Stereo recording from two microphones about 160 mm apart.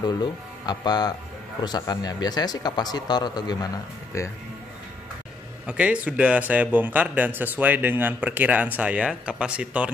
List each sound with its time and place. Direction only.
0.0 s speech: 25° left (ahead or behind)
5.7 s speech: 10° right (ahead or behind)